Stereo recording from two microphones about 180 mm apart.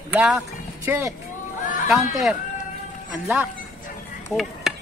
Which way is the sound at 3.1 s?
Centre (ahead or behind).